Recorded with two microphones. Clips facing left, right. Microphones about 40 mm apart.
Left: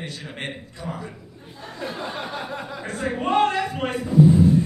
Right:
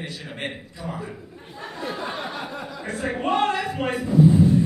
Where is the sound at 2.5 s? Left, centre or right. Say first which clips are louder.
Left 2 dB; centre.